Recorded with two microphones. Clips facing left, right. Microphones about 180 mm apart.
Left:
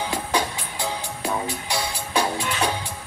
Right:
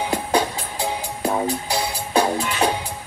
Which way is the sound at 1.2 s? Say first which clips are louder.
Right 6 dB; 35° right (ahead or behind).